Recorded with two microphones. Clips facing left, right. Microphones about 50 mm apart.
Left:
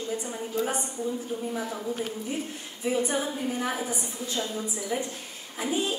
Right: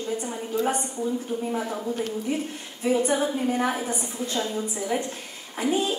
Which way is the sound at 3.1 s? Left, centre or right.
Right.